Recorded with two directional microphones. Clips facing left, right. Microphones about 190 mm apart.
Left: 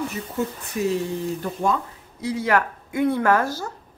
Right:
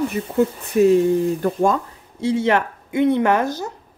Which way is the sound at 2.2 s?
25° right (ahead or behind).